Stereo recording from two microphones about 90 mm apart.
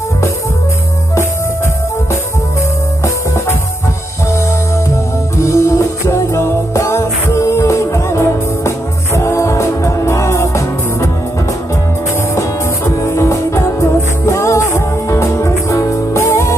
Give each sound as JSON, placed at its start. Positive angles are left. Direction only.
{"t": 5.4, "sound": "music", "side_deg": 35}
{"t": 12.4, "sound": "music", "side_deg": 35}